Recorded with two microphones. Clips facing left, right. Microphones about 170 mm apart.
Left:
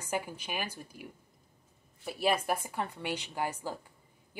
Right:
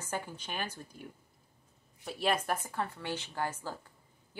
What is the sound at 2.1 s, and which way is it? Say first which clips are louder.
Speech: left 2 dB; 10° left (ahead or behind).